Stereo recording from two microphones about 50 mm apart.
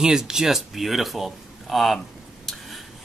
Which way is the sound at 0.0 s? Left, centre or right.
Centre.